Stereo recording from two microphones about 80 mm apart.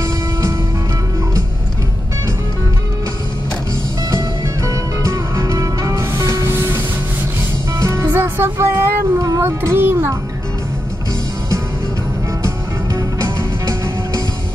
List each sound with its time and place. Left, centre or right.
0.0 s music: right
4.1 s music: right
6.5 s music: right
12.4 s music: right